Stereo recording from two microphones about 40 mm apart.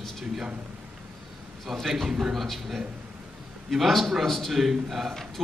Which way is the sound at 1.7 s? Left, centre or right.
Centre.